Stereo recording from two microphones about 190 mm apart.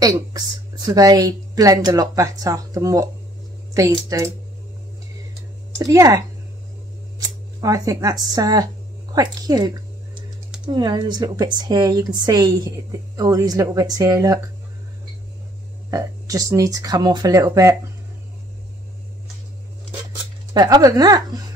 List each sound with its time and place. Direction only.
0.0 s speech: 20° right (ahead or behind)
5.8 s speech: 15° right (ahead or behind)
10.7 s speech: 25° right (ahead or behind)
15.9 s speech: 15° right (ahead or behind)
20.5 s speech: 20° right (ahead or behind)